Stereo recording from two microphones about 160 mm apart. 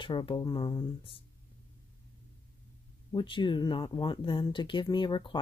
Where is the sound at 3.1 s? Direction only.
30° left (ahead or behind).